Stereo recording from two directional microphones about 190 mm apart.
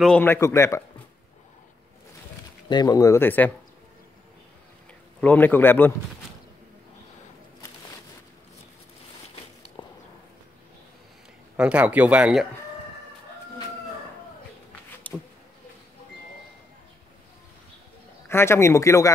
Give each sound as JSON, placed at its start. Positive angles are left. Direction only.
{"t": 0.0, "sound": "a man's voice", "side_deg": 10}
{"t": 2.7, "sound": "a man's voice", "side_deg": 20}
{"t": 5.2, "sound": "a man's voice", "side_deg": 10}
{"t": 9.8, "sound": "a sound", "side_deg": 25}
{"t": 11.5, "sound": "speech", "side_deg": -5}
{"t": 15.0, "sound": "a sound", "side_deg": 10}
{"t": 18.3, "sound": "a man's voice", "side_deg": 15}